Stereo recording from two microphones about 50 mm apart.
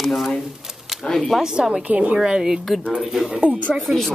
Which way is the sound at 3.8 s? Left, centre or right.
Centre.